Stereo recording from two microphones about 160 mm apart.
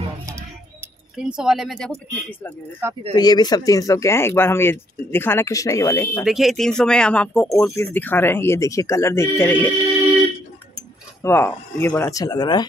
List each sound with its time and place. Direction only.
1.1 s speech: 5° right (ahead or behind)
2.8 s speech: 10° right (ahead or behind)
3.2 s speech: 25° left (ahead or behind)
6.2 s speech: centre (ahead or behind)
11.2 s speech: 15° left (ahead or behind)